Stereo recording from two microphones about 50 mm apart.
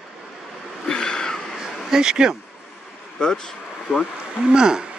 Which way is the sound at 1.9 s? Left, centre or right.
Centre.